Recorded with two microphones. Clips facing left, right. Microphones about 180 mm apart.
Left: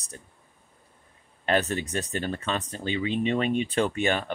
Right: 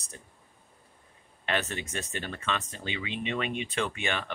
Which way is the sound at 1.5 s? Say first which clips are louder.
Left 6 dB; 35° left (ahead or behind).